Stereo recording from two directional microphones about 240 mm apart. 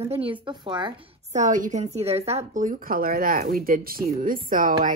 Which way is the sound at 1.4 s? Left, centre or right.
Right.